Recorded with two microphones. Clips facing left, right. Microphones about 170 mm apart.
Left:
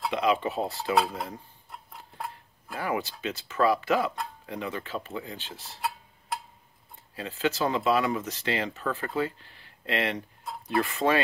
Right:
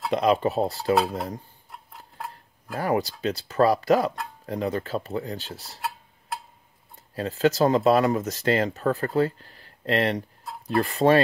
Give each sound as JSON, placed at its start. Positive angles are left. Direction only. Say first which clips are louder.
{"t": 0.1, "sound": "speech", "louder": "right 6 dB", "side_deg": -40}
{"t": 1.7, "sound": "a sound", "louder": "even", "side_deg": 0}
{"t": 2.7, "sound": "speech", "louder": "right 6 dB", "side_deg": -40}
{"t": 5.8, "sound": "clock", "louder": "left 1 dB", "side_deg": 0}
{"t": 7.2, "sound": "speech", "louder": "right 7 dB", "side_deg": -40}